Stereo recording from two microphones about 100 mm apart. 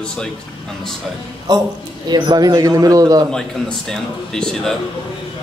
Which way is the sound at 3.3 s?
5° left (ahead or behind).